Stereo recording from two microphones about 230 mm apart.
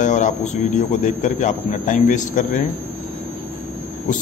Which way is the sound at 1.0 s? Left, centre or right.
Left.